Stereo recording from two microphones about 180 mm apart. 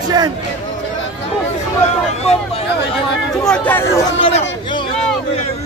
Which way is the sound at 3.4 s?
5° left (ahead or behind).